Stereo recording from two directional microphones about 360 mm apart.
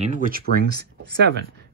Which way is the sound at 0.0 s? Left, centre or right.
Right.